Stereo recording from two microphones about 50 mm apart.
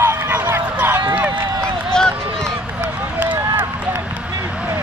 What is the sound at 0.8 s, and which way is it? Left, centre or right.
Run, right.